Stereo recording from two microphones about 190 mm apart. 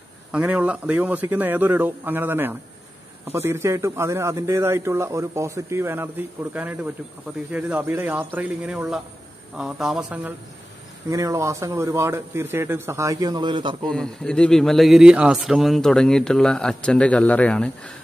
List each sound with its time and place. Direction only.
0.3 s a man's voice: 5° right (ahead or behind)
11.1 s a man's voice: 15° right (ahead or behind)
13.8 s a man's voice: 5° left (ahead or behind)